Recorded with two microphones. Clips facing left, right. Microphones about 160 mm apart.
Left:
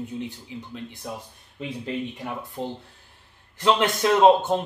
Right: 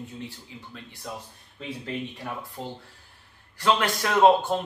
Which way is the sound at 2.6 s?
20° left (ahead or behind).